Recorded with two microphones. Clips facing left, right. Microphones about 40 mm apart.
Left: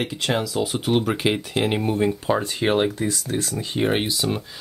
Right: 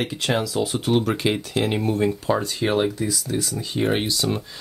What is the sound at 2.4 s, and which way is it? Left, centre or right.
Speech, left.